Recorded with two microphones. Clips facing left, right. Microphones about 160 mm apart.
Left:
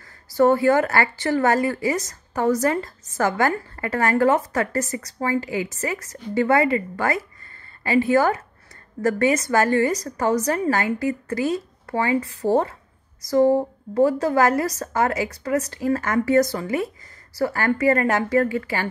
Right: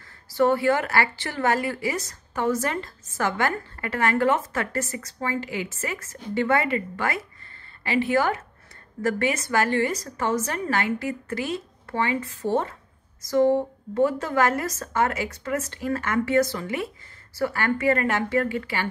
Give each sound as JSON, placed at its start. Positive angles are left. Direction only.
{"t": 0.3, "sound": "speech", "side_deg": 40}